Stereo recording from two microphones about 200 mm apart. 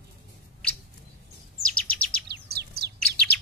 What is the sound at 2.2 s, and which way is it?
Chirp, 50° right (ahead or behind).